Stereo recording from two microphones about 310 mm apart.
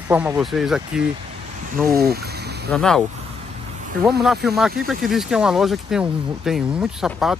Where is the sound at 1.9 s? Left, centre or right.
Right.